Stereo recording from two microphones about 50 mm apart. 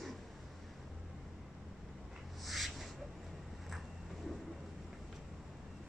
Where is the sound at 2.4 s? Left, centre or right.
Centre.